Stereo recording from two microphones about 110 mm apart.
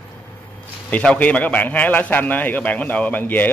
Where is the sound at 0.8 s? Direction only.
10° left (ahead or behind).